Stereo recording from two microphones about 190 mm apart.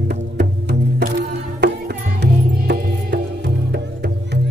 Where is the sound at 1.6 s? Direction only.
60° right (ahead or behind).